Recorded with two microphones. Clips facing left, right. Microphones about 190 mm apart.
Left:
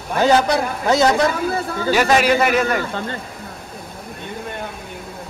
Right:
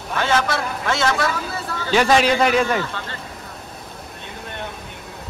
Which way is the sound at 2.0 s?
5° left (ahead or behind).